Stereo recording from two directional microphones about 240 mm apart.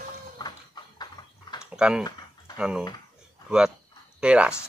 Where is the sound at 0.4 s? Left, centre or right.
Centre.